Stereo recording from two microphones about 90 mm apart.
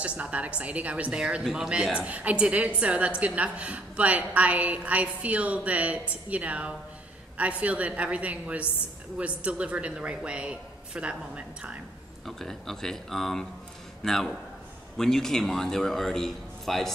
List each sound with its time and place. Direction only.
0.0 s a woman's voice: 15° right (ahead or behind)
12.3 s a man's voice: 5° left (ahead or behind)